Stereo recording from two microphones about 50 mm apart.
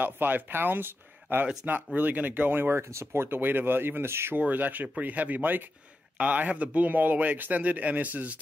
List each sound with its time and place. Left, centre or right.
0.0 s a man's voice: right
2.8 s speech: right
4.4 s a man's voice: right
6.1 s a man's voice: right